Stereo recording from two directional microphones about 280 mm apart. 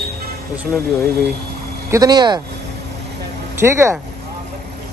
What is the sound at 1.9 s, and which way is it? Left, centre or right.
Speech, centre.